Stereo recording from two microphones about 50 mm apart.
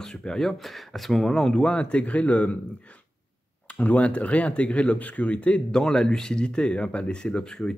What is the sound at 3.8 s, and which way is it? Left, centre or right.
Speech, left.